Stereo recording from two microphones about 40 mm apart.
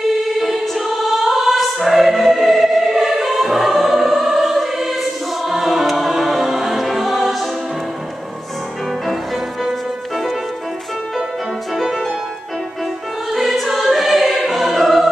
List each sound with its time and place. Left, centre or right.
0.4 s choir: centre
9.0 s music: centre
11.7 s music: centre
13.3 s music: centre